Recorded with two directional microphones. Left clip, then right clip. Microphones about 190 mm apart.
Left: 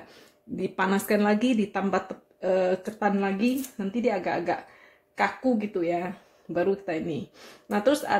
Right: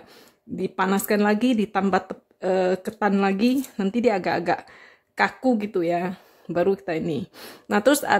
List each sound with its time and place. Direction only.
0.6 s speech: 35° right (ahead or behind)